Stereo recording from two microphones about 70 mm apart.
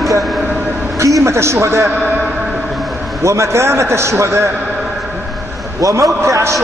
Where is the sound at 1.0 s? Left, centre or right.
Right.